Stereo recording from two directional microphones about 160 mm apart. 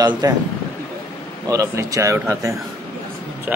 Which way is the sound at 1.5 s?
20° right (ahead or behind).